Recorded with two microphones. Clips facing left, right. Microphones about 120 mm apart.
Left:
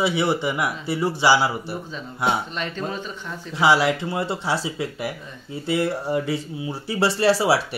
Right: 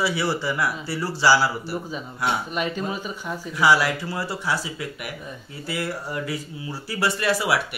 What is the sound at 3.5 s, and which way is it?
Speech, 25° left (ahead or behind).